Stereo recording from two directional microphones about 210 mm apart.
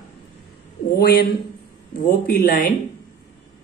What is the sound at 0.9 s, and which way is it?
A woman's voice, 50° left (ahead or behind).